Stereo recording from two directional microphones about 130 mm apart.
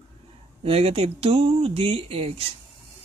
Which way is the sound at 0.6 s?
50° right (ahead or behind).